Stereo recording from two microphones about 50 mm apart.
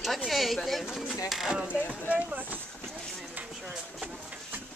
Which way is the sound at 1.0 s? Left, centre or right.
Centre.